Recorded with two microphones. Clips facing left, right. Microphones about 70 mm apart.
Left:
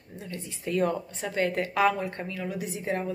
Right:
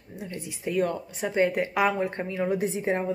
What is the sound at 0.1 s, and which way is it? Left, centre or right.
Speech, centre.